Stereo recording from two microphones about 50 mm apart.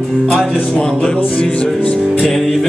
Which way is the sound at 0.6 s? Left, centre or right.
Centre.